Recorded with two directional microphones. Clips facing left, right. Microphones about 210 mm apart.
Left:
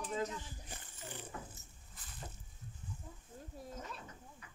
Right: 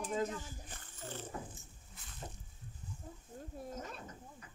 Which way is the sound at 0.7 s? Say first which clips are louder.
Right 2 dB; 15° left (ahead or behind).